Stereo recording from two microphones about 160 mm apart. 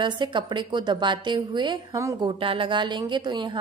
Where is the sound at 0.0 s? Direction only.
30° right (ahead or behind).